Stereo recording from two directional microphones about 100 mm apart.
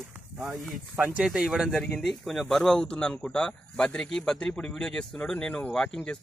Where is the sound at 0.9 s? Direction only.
15° right (ahead or behind).